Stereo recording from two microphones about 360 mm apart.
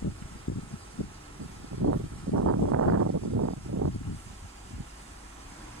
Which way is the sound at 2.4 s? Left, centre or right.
Right.